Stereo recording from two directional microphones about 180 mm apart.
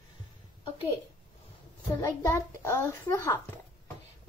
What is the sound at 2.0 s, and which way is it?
A child's voice, 15° left (ahead or behind).